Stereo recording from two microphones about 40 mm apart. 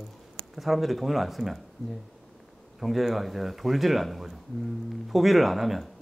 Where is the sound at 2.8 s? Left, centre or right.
Centre.